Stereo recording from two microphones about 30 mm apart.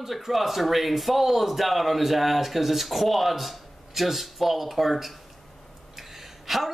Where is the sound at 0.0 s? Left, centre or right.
Centre.